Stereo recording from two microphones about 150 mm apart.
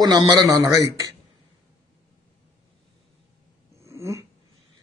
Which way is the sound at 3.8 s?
20° right (ahead or behind).